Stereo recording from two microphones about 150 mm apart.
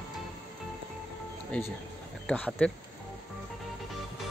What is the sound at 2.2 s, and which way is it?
Speech, 10° left (ahead or behind).